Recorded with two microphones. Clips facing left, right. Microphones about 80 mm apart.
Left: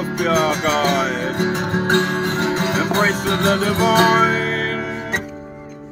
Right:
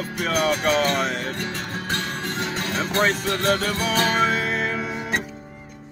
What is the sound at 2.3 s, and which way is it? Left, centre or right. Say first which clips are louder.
Music: left 8 dB; left.